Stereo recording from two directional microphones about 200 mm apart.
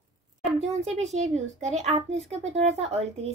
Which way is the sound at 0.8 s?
35° right (ahead or behind).